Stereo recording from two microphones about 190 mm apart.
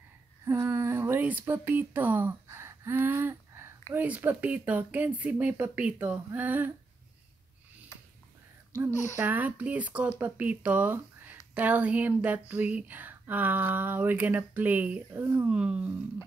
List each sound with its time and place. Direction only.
0.5 s speech: 15° right (ahead or behind)
7.9 s a sound: 15° left (ahead or behind)
9.1 s speech: 10° right (ahead or behind)